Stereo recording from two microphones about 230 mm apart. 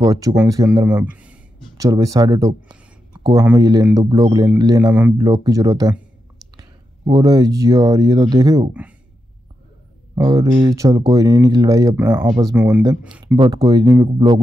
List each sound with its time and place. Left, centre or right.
0.0 s speech: centre
0.8 s a sound: centre
3.5 s speech: centre
7.1 s speech: centre
10.1 s speech: centre
13.4 s speech: centre